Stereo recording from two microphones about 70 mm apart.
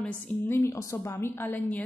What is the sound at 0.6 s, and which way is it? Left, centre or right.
Speech, left.